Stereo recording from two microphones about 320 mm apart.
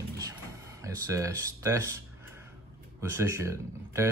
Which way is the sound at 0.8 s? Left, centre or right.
Centre.